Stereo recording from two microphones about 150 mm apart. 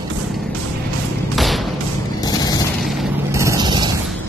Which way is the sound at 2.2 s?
25° left (ahead or behind).